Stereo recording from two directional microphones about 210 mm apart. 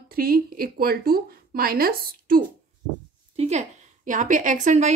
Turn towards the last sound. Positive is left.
turn(degrees=-35)  # may be behind; listen again after turning